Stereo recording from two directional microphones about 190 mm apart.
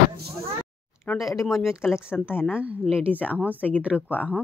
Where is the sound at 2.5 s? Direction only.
Centre (ahead or behind).